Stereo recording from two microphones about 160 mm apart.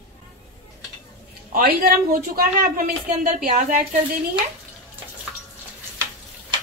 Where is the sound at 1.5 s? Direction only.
65° right (ahead or behind).